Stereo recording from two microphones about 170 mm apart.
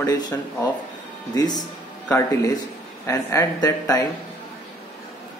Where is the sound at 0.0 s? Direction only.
25° left (ahead or behind).